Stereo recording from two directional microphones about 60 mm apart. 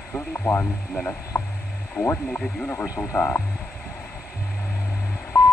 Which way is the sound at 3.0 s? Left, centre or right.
Left.